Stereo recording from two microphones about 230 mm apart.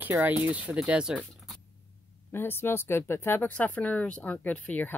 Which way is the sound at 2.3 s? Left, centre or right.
Centre.